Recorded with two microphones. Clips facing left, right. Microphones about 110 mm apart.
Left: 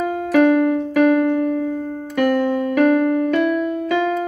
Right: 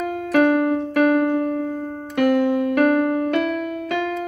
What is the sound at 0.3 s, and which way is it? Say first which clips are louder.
Keyboard: left 2 dB; 50° right (ahead or behind).